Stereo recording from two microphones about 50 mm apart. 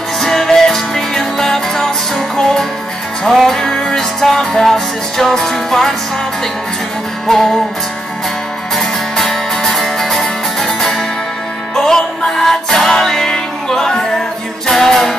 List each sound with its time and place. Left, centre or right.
0.2 s music: centre
7.2 s music: centre
8.7 s music: centre